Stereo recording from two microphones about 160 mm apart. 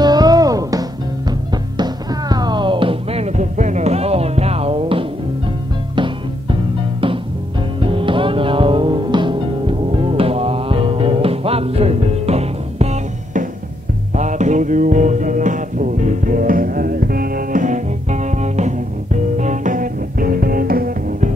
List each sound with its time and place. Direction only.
0.0 s music: 25° right (ahead or behind)
7.8 s music: 35° right (ahead or behind); by 21.3 s 65° right (ahead or behind)